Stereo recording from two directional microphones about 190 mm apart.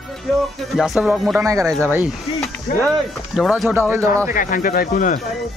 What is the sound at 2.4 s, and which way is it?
Speech, centre (ahead or behind).